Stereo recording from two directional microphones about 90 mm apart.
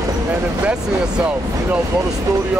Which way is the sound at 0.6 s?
10° right (ahead or behind).